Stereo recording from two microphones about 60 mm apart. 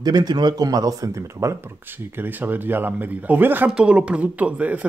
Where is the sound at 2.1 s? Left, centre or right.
Right.